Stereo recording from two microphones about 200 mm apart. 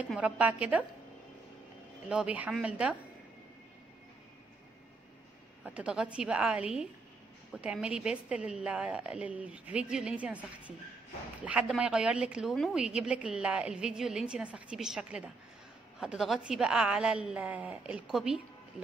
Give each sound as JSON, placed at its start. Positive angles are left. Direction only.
{"t": 0.0, "sound": "a woman's voice", "side_deg": -5}
{"t": 2.0, "sound": "a woman's voice", "side_deg": -5}
{"t": 5.8, "sound": "a woman's voice", "side_deg": -5}
{"t": 11.4, "sound": "a woman's voice", "side_deg": -5}